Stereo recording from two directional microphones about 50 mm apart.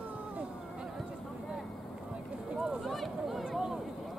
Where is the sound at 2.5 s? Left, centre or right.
Centre.